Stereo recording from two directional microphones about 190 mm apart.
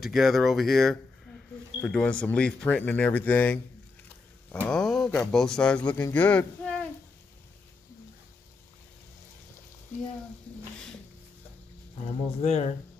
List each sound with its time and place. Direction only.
0.0 s speech: centre (ahead or behind)
4.6 s speech: 5° left (ahead or behind)
12.4 s speech: 35° left (ahead or behind)